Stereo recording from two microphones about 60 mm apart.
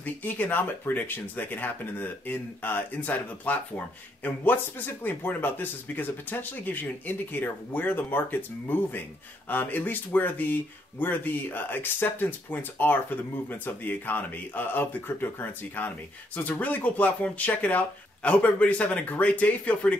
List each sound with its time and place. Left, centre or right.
0.0 s speech: left